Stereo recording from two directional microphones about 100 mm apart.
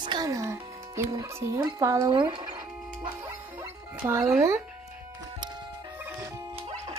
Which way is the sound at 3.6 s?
30° right (ahead or behind).